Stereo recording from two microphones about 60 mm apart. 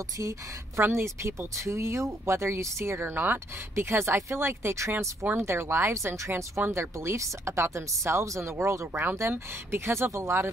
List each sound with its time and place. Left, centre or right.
0.2 s a woman's voice: right
0.8 s speech: right